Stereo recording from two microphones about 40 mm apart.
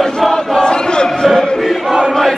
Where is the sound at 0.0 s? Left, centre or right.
Centre.